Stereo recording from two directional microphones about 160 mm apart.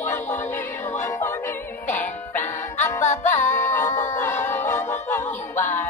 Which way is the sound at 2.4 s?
50° left (ahead or behind).